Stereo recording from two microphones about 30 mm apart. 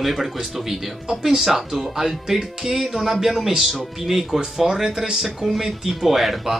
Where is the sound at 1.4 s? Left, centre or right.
Centre.